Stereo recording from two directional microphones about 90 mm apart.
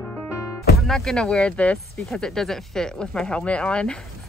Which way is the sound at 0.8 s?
5° left (ahead or behind).